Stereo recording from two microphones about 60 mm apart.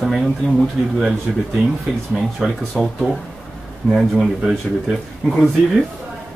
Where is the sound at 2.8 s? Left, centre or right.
Centre.